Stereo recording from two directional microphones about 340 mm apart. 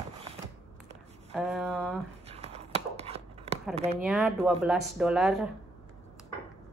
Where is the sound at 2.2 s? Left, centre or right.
Centre.